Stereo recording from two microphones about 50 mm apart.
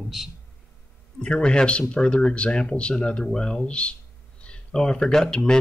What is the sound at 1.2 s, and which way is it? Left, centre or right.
Speech, centre.